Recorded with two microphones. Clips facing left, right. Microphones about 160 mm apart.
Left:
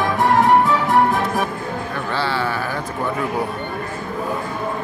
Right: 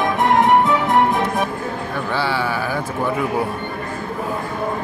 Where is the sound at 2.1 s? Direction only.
15° right (ahead or behind).